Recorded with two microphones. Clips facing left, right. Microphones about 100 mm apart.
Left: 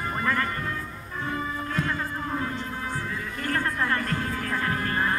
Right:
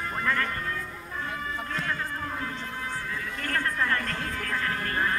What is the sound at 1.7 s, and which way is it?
Hum, 15° left (ahead or behind).